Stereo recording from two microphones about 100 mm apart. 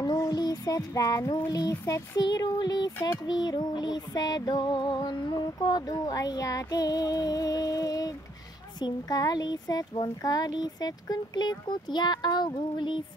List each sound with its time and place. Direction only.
0.0 s music: 35° left (ahead or behind)
3.3 s a child's voice: 45° left (ahead or behind)